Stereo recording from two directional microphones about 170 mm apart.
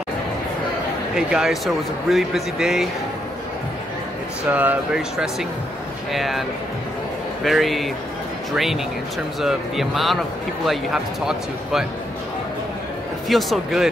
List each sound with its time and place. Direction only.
1.1 s speech: centre (ahead or behind)
4.5 s speech: 10° right (ahead or behind)
7.4 s speech: centre (ahead or behind)
13.3 s speech: centre (ahead or behind)